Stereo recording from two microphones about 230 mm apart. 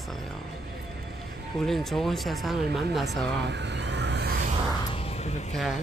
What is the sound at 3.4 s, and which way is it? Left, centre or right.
Vehicle, right.